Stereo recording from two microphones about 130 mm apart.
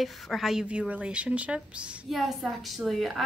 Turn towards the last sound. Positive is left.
turn(degrees=0)  # may be behind; listen again after turning